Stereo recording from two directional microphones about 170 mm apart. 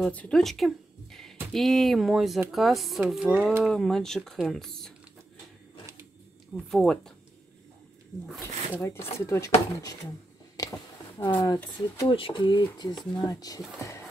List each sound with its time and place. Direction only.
0.0 s speech: 5° left (ahead or behind)
6.5 s speech: centre (ahead or behind)
8.8 s speech: 15° left (ahead or behind)
10.6 s a sound: 20° left (ahead or behind)
11.2 s speech: 25° left (ahead or behind)